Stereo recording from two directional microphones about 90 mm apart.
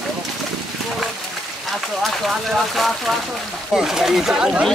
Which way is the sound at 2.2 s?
Centre (ahead or behind).